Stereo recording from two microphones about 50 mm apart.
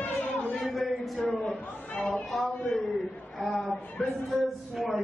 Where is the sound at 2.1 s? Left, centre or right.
Centre.